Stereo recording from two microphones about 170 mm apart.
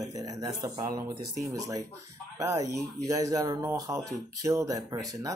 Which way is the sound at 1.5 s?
20° right (ahead or behind).